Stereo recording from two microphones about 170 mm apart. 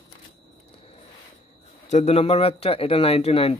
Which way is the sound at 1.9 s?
40° left (ahead or behind).